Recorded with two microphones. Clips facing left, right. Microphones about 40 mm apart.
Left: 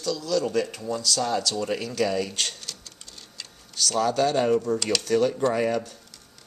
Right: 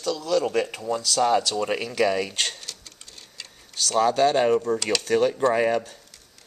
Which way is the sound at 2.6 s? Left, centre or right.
Centre.